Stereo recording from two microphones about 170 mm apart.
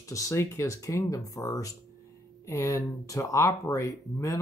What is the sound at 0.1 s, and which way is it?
Speech, 20° left (ahead or behind).